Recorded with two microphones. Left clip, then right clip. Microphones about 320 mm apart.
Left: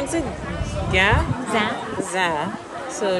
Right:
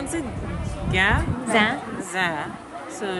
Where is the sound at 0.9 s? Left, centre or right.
Centre.